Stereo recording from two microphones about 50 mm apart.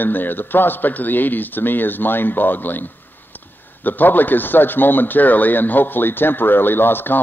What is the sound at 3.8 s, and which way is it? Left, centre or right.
Speech, left.